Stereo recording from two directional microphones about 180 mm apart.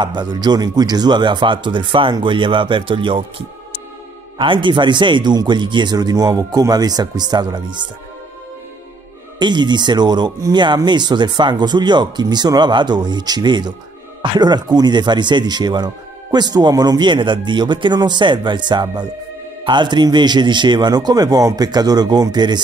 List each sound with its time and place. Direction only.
0.0 s speech: 25° right (ahead or behind)
9.4 s speech: 25° right (ahead or behind)